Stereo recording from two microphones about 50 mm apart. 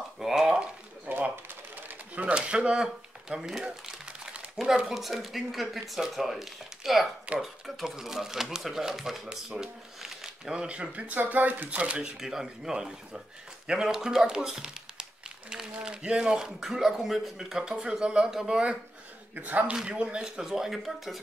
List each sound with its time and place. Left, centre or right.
0.2 s a sound: centre
1.3 s a sound: right
2.3 s speech: right
3.3 s crumpling: centre
4.8 s speech: centre; by 11.9 s right
12.2 s speech: centre
19.3 s speech: right
19.7 s speech: centre